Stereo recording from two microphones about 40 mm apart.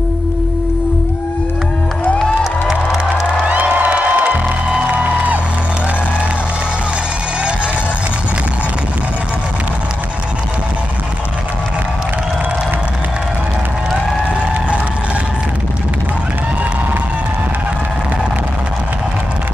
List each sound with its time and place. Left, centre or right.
3.4 s music: right